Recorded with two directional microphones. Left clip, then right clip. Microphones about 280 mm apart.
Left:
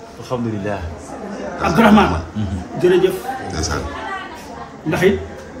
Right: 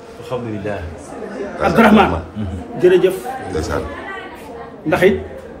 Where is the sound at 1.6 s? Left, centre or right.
Centre.